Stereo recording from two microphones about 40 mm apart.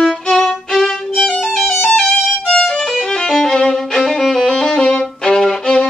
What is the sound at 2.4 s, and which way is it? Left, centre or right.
Violin, left.